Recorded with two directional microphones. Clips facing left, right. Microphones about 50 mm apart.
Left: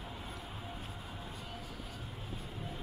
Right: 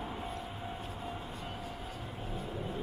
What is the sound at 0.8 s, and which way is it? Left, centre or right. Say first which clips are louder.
Vehicle: right 5 dB; right.